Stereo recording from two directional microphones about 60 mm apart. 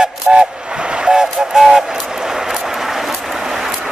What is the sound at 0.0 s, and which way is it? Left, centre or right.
Vehicle, centre.